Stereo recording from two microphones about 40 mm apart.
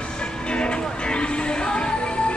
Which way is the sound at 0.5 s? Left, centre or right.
Left.